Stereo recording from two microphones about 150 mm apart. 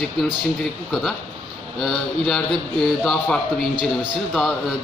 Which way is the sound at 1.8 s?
Centre (ahead or behind).